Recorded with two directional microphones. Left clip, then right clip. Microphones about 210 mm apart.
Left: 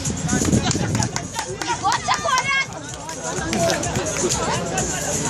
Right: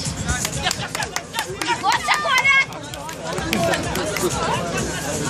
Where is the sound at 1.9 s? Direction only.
15° left (ahead or behind).